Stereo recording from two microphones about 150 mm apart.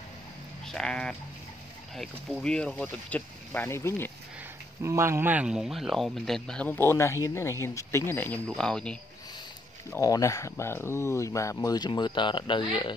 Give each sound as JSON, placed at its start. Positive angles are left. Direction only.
{"t": 0.7, "sound": "speech", "side_deg": 5}
{"t": 4.8, "sound": "speech", "side_deg": -15}
{"t": 9.8, "sound": "speech", "side_deg": 20}